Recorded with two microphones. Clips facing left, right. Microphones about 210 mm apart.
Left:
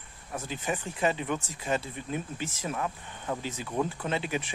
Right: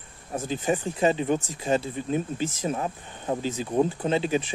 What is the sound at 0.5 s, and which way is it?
Speech, 30° right (ahead or behind).